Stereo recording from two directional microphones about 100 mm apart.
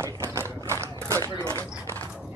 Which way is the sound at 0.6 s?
30° right (ahead or behind).